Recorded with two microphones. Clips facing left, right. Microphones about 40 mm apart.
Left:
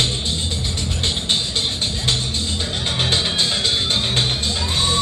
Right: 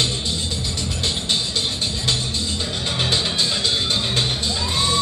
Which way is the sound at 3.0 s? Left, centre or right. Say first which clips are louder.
Left 1 dB; left.